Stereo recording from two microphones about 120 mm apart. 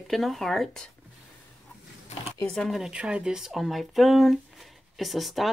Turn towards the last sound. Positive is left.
turn(degrees=0)  # may be behind; listen again after turning